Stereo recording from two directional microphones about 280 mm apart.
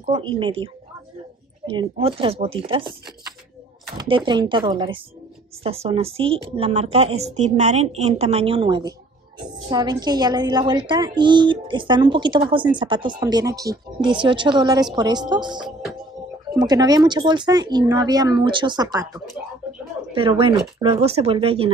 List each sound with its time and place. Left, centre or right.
0.0 s a woman's voice: centre
1.7 s a woman's voice: centre
4.0 s a woman's voice: centre
19.6 s a sound: centre
20.1 s a woman's voice: centre